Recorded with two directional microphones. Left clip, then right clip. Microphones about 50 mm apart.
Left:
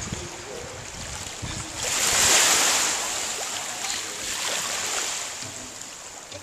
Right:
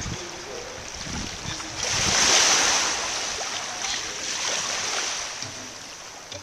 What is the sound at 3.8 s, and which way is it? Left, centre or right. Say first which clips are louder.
Boat: right 1 dB; centre.